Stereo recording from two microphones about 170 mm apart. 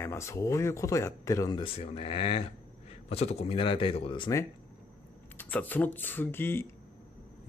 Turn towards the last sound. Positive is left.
turn(degrees=15)  # may be behind; listen again after turning